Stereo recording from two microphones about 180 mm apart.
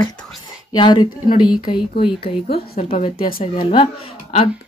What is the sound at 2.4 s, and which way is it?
Speech, 60° left (ahead or behind).